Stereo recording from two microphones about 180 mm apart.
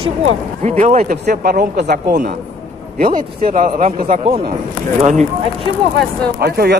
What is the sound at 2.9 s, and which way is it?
A man's voice, 50° right (ahead or behind).